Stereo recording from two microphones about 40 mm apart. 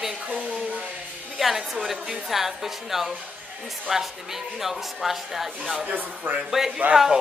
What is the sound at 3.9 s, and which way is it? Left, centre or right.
Music, centre.